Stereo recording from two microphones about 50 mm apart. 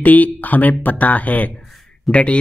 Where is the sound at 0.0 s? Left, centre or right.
Left.